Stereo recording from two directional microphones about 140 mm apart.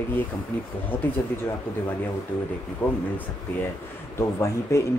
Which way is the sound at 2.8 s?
15° left (ahead or behind).